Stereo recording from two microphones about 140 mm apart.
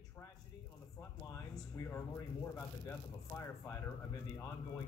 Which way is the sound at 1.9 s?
15° left (ahead or behind).